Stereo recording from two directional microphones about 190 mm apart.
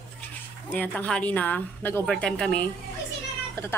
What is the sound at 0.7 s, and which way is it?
A woman's voice, 5° left (ahead or behind).